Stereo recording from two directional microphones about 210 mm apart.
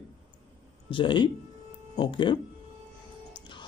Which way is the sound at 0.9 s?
25° left (ahead or behind).